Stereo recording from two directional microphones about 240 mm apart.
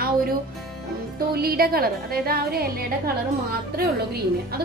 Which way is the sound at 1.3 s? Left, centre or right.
Right.